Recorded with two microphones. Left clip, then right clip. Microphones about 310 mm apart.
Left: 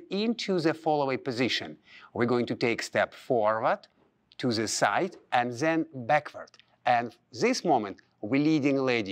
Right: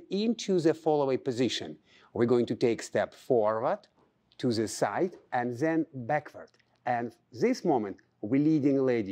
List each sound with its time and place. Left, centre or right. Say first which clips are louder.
0.4 s speech: right 3 dB; left
6.0 s speech: left 5 dB; left
8.5 s speech: left 1 dB; left
8.7 s a man's voice: even; left